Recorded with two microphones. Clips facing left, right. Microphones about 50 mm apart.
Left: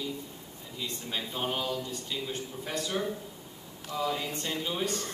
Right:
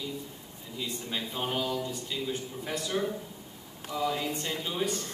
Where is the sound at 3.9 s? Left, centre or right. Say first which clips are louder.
Right 1 dB; centre.